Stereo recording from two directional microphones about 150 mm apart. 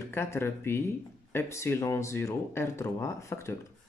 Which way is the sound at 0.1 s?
15° left (ahead or behind).